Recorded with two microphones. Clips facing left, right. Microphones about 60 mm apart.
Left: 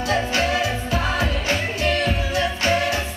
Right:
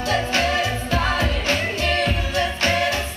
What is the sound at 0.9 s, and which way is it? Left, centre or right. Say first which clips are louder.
Music: right 2 dB; right.